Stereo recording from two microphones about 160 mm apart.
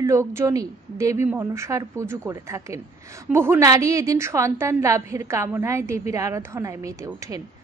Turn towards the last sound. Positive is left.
turn(degrees=-20)  # may be behind; listen again after turning